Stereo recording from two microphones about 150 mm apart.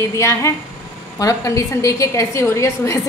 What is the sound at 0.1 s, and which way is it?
A woman's voice, 20° left (ahead or behind).